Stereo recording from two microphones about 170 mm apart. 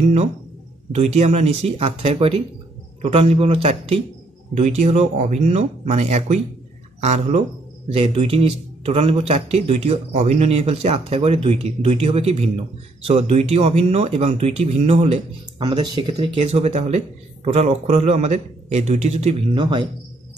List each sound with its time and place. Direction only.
0.0 s speech: 40° right (ahead or behind)
15.6 s speech: 25° right (ahead or behind)